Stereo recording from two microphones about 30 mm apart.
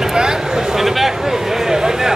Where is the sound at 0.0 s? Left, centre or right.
Right.